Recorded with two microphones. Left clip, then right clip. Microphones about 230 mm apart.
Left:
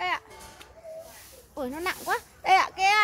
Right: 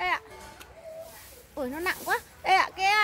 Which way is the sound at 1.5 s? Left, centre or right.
Centre.